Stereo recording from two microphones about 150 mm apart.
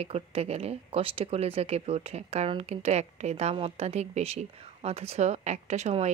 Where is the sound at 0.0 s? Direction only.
40° right (ahead or behind).